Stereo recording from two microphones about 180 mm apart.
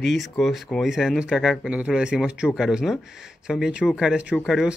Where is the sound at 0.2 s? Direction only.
Centre (ahead or behind).